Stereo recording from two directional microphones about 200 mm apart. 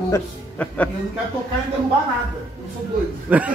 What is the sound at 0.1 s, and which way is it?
Speech, 10° left (ahead or behind).